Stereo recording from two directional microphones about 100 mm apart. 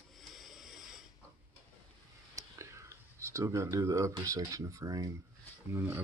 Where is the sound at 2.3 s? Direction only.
30° right (ahead or behind).